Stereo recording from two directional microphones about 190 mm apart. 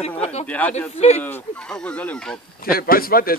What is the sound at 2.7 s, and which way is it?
Speech, 50° left (ahead or behind).